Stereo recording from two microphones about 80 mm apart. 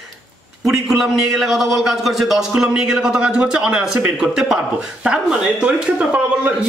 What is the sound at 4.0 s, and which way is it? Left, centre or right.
Speech, centre.